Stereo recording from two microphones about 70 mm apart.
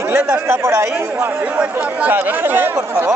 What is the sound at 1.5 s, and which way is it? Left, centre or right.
Speech, right.